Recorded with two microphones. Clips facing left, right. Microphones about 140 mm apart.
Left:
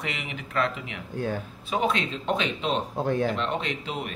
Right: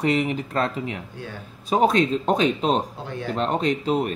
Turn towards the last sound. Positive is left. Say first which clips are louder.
# right 10 dB
turn(degrees=-40)  # may be behind; listen again after turning